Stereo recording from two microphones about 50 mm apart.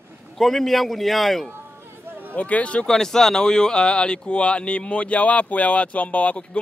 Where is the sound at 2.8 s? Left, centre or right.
Centre.